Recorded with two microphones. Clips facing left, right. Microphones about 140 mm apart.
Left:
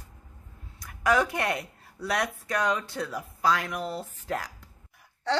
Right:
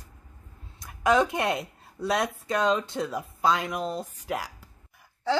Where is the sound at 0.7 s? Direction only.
20° right (ahead or behind).